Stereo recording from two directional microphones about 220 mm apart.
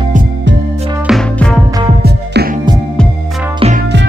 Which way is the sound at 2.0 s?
45° right (ahead or behind).